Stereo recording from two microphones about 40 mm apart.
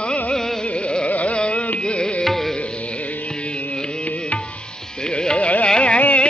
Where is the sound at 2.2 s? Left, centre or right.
Centre.